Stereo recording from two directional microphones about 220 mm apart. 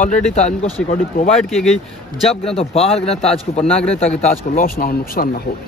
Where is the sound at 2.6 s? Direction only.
25° left (ahead or behind).